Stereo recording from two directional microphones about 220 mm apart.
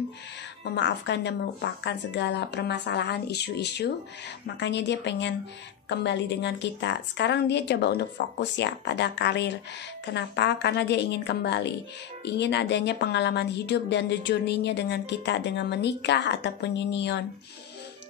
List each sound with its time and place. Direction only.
0.7 s speech: 55° left (ahead or behind)